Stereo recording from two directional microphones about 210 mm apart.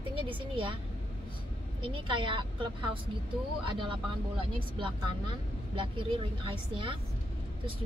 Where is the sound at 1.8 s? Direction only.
25° right (ahead or behind).